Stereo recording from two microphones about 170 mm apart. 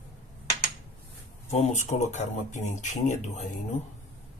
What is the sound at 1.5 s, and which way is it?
Speech, 45° left (ahead or behind).